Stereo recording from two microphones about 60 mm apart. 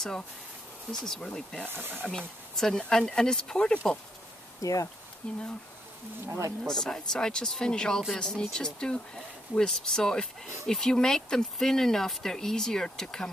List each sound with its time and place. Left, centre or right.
0.9 s speech: centre
1.7 s speech: right
2.0 s speech: centre
4.6 s speech: left
5.2 s speech: centre
6.2 s speech: right
6.6 s speech: centre